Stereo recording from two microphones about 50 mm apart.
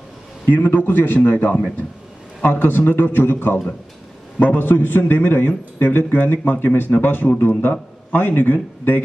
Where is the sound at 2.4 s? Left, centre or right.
Left.